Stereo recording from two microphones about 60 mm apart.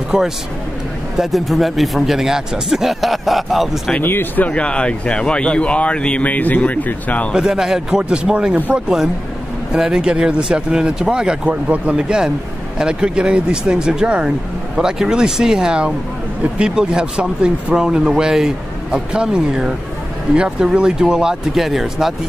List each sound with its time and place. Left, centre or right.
0.1 s speech: centre
4.0 s speech: left
4.5 s speech: centre
7.3 s speech: centre
11.4 s speech: right
12.0 s speech: centre